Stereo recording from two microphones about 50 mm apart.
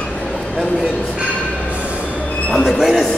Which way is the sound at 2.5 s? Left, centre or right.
Centre.